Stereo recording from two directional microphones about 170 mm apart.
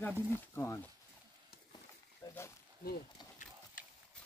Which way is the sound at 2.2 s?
15° left (ahead or behind).